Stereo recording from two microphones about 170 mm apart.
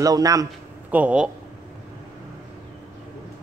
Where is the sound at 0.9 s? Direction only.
5° right (ahead or behind).